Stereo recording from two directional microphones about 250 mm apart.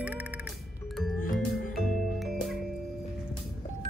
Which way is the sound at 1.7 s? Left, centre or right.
Centre.